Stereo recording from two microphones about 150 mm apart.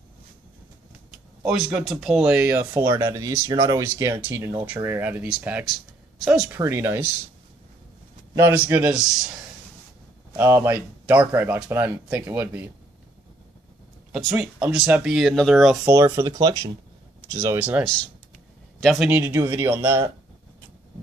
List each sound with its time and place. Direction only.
1.4 s speech: 5° right (ahead or behind)
6.5 s speech: 15° right (ahead or behind)
8.4 s speech: 15° right (ahead or behind)
10.3 s speech: 15° right (ahead or behind)
14.3 s speech: 5° right (ahead or behind)
15.9 s speech: 20° right (ahead or behind)
17.6 s speech: 10° right (ahead or behind)
17.8 s speech: 5° left (ahead or behind); by 20.1 s 15° right (ahead or behind)